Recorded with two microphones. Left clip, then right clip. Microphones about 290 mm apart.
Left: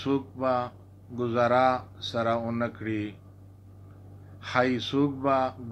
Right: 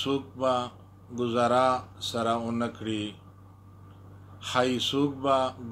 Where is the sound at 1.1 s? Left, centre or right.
Right.